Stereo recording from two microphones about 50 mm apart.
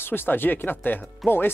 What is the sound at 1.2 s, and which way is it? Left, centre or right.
Speech, centre.